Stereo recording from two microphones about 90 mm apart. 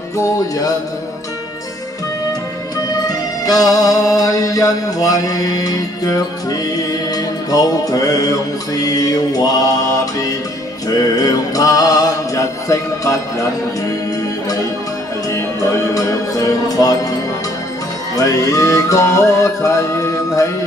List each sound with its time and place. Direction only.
0.2 s music: 45° left (ahead or behind)
2.9 s music: 45° left (ahead or behind)
11.0 s music: 40° left (ahead or behind)
15.9 s music: 40° left (ahead or behind)
18.1 s music: 40° left (ahead or behind)